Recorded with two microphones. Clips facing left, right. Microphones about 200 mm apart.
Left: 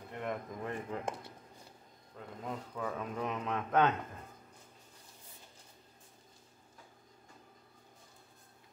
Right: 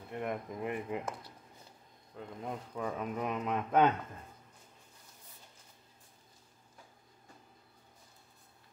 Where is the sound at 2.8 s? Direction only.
15° right (ahead or behind).